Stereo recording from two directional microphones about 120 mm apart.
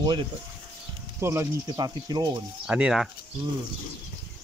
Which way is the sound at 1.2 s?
25° right (ahead or behind).